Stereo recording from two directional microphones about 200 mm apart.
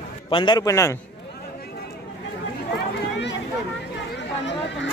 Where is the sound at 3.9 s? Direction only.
60° left (ahead or behind).